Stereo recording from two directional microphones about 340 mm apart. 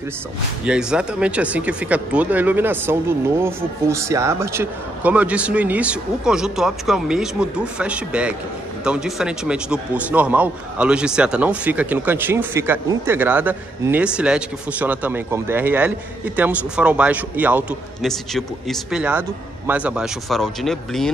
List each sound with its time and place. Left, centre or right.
0.7 s speech: centre